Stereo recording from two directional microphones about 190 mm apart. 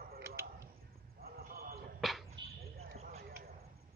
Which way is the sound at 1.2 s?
55° right (ahead or behind).